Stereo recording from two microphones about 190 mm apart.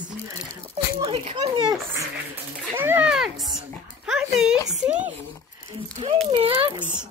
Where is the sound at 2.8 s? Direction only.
10° right (ahead or behind).